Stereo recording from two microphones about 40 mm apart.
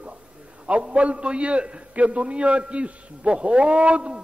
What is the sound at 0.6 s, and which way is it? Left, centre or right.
A man's voice, right.